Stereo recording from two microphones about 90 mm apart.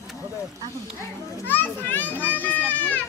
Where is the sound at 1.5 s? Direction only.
20° left (ahead or behind).